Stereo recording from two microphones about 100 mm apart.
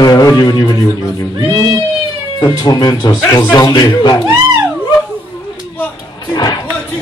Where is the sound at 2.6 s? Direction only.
40° left (ahead or behind).